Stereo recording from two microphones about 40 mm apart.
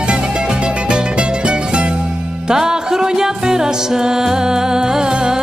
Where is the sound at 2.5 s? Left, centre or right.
Centre.